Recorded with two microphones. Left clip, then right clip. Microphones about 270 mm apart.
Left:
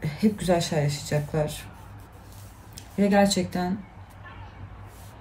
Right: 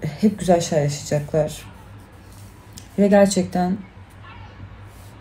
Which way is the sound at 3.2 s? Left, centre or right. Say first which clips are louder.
Right 5 dB; right.